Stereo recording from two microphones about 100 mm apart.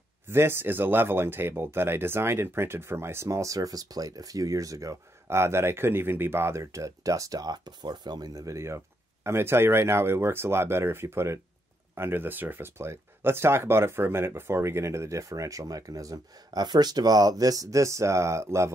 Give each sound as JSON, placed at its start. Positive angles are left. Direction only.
{"t": 0.3, "sound": "speech", "side_deg": -25}